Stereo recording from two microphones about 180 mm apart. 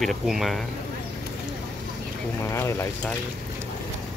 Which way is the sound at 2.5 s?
15° left (ahead or behind).